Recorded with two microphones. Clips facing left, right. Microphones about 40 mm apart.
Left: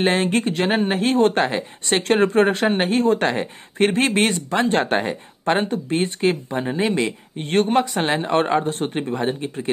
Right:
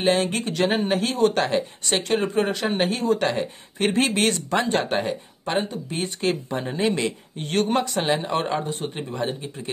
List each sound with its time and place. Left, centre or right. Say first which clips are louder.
0.0 s speech: left 3 dB; left
1.4 s speech: left 1 dB; centre
2.0 s speech: left 6 dB; left
4.2 s speech: left 2 dB; left
4.6 s speech: left 3 dB; left
6.5 s speech: left 2 dB; centre
7.0 s speech: left 3 dB; left
8.1 s speech: left 4 dB; left
8.6 s speech: left 5 dB; left
8.9 s speech: left 5 dB; left